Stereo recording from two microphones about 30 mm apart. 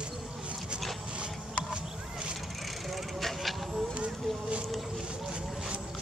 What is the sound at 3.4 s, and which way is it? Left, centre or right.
Vehicle, centre.